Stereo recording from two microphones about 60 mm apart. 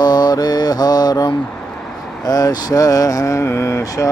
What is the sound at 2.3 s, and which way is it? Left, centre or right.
Mantra, left.